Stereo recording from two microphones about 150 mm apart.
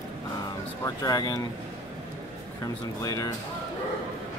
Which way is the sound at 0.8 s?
25° left (ahead or behind).